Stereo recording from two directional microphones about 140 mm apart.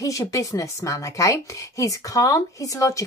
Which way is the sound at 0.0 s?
25° left (ahead or behind).